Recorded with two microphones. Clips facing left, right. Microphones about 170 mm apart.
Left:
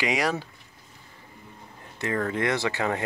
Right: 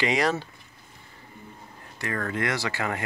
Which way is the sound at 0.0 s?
10° left (ahead or behind).